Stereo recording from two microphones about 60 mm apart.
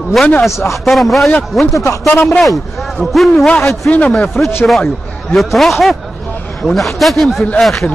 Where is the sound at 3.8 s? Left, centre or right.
Left.